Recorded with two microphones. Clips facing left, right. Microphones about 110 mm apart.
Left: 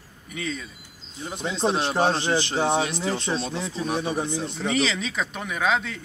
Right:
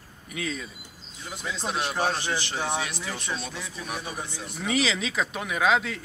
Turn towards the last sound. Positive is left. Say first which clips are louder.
# right 1 dB
turn(degrees=0)  # may be behind; listen again after turning